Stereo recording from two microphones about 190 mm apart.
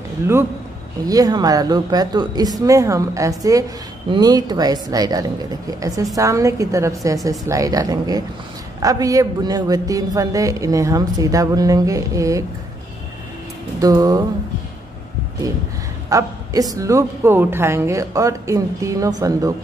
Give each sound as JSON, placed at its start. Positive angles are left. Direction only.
{"t": 1.0, "sound": "speech", "side_deg": -20}
{"t": 13.7, "sound": "speech", "side_deg": -20}
{"t": 16.1, "sound": "speech", "side_deg": -20}